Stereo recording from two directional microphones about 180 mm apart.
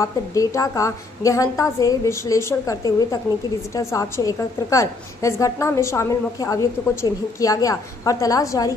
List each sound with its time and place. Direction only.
0.0 s a woman's voice: 20° left (ahead or behind)